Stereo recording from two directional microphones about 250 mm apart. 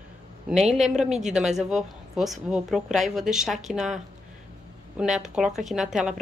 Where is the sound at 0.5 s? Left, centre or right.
Centre.